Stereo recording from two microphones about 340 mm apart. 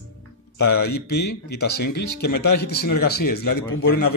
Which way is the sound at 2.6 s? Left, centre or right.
Left.